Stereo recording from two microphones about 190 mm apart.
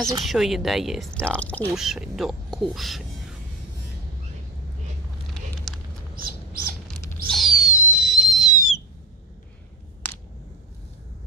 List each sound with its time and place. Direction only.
0.2 s speech: centre (ahead or behind)
6.1 s a sound: 50° right (ahead or behind)
7.3 s whistle: centre (ahead or behind)